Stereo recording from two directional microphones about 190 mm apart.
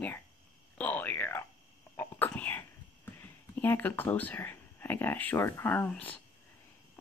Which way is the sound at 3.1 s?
10° left (ahead or behind).